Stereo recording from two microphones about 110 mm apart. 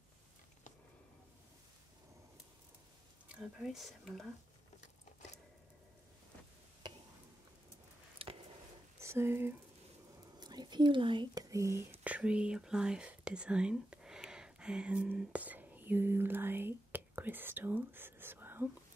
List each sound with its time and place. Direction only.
3.3 s speech: 10° right (ahead or behind)
6.8 s a sound: 40° right (ahead or behind)
8.2 s a sound: 55° right (ahead or behind)
9.0 s speech: 25° right (ahead or behind)
10.4 s speech: 40° right (ahead or behind)
11.4 s speech: 30° right (ahead or behind)